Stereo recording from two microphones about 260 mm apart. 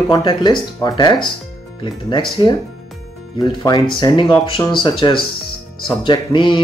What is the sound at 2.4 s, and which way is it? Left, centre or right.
Speech, centre.